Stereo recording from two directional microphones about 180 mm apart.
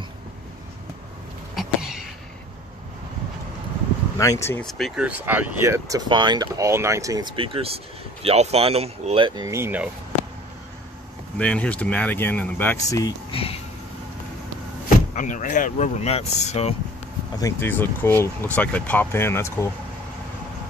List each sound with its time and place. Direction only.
1.5 s cough: centre (ahead or behind)
4.2 s speech: 15° left (ahead or behind)
4.6 s speech: centre (ahead or behind)
11.3 s speech: 5° left (ahead or behind)
13.3 s speech: 30° left (ahead or behind)
15.1 s speech: 45° left (ahead or behind)
17.4 s speech: 15° left (ahead or behind)